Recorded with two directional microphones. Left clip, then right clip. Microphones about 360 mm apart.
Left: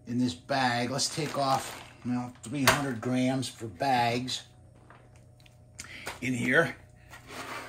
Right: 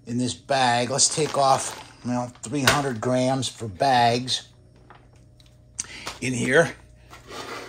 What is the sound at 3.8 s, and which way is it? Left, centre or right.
Speech, right.